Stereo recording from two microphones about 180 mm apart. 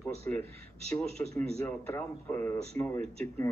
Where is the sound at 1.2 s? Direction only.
15° left (ahead or behind).